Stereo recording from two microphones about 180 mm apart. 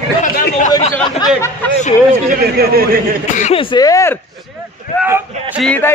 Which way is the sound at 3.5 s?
25° left (ahead or behind).